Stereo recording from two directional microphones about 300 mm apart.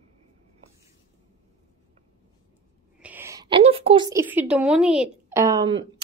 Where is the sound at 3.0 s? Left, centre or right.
Centre.